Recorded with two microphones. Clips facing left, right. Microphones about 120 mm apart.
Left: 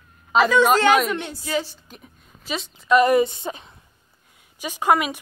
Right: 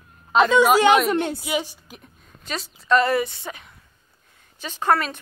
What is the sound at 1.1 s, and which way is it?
Speech, 50° right (ahead or behind).